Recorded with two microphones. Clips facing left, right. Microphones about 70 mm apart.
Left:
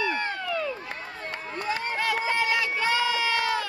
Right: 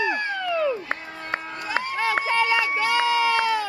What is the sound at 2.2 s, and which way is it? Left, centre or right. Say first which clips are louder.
Run: right 6 dB; right.